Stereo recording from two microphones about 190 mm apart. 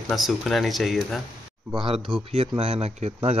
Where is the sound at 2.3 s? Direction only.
30° right (ahead or behind).